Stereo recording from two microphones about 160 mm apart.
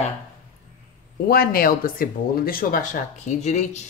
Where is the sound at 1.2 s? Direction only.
70° left (ahead or behind).